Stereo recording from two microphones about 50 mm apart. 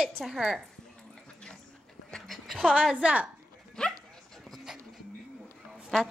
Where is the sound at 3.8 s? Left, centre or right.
Centre.